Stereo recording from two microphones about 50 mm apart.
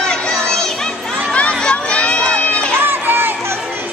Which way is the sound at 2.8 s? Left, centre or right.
Right.